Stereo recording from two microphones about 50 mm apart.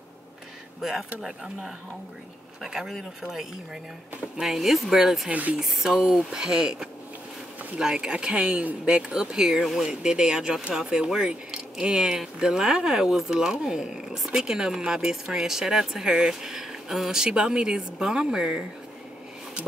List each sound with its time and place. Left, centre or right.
1.2 s speech: centre
5.3 s speech: right
5.6 s speech: centre
9.6 s speech: centre
9.8 s speech: centre